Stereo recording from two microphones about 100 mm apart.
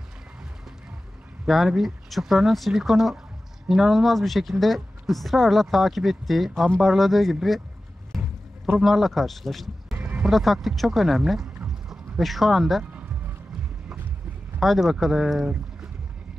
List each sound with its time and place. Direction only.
1.5 s speech: centre (ahead or behind)
8.1 s a sound: centre (ahead or behind)
8.6 s speech: centre (ahead or behind)
9.9 s music: 20° right (ahead or behind)
10.2 s speech: centre (ahead or behind)
14.6 s speech: centre (ahead or behind)